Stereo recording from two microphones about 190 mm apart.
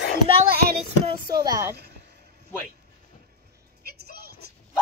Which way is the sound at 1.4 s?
20° right (ahead or behind).